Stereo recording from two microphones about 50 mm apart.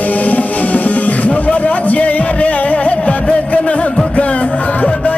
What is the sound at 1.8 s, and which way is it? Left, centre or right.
Music, left.